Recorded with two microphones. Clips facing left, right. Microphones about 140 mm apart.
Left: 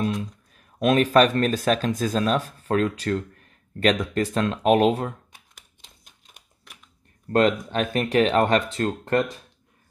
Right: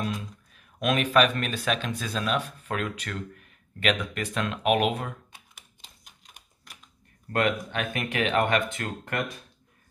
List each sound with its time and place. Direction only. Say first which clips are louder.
0.6 s speech: left 6 dB; 35° left (ahead or behind)
5.8 s typing: right 1 dB; centre (ahead or behind)
7.3 s speech: left 6 dB; 35° left (ahead or behind)